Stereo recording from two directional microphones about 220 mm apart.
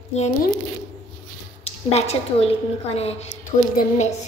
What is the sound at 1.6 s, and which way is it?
A child's voice, 30° left (ahead or behind).